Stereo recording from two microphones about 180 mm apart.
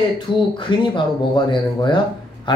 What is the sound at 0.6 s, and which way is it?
Speech, 25° left (ahead or behind).